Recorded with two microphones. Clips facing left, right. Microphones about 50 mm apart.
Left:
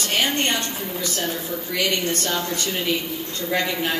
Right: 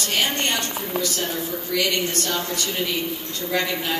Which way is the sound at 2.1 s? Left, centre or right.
Left.